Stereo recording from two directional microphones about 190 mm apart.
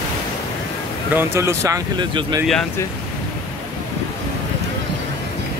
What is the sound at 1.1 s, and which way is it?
Speech, 15° right (ahead or behind).